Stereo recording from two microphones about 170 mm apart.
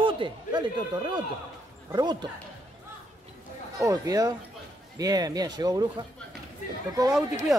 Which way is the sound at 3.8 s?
20° right (ahead or behind).